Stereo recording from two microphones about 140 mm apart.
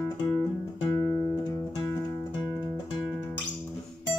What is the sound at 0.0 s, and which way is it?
Music, 20° left (ahead or behind).